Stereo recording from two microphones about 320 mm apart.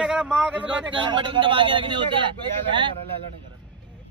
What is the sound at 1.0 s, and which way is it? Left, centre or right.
A man's voice, centre.